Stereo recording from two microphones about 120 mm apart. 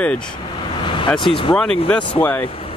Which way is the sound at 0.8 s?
40° left (ahead or behind).